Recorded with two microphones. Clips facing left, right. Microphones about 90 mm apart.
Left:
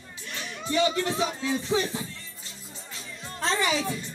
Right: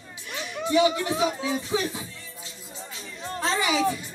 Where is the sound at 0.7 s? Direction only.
15° right (ahead or behind).